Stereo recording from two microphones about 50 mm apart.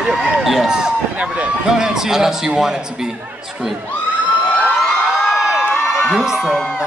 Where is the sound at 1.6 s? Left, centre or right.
Centre.